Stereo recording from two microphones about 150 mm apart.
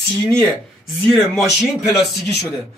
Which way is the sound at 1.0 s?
15° left (ahead or behind).